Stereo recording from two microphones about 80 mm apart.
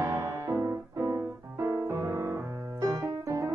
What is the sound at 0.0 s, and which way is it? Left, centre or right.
Music, right.